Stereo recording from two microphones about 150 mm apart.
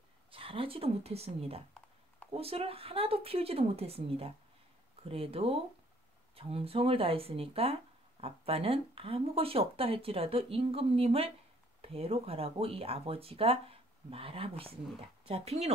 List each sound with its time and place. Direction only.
0.3 s speech: 35° right (ahead or behind)